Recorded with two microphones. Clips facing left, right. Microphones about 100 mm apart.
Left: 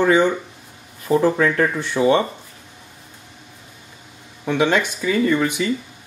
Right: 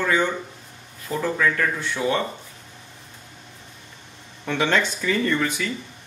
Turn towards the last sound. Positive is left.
turn(degrees=15)  # may be behind; listen again after turning